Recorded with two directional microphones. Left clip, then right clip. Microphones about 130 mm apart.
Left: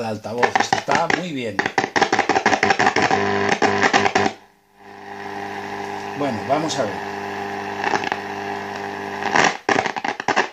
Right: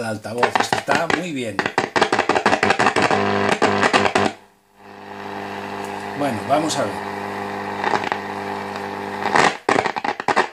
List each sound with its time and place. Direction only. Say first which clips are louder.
0.4 s chopping: even; 40° right (ahead or behind)
7.3 s vehicle: even; 45° right (ahead or behind)
9.1 s wood: right 1 dB; 40° right (ahead or behind)